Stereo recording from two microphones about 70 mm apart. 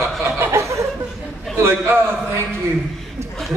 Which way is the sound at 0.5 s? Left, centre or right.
Right.